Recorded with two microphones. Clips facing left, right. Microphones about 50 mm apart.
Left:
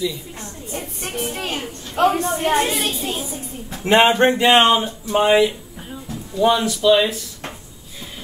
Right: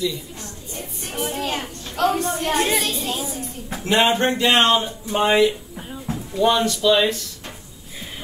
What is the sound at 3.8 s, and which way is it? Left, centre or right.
Speech, left.